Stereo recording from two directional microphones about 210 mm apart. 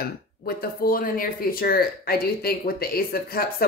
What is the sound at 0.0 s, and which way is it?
Speech, 45° left (ahead or behind).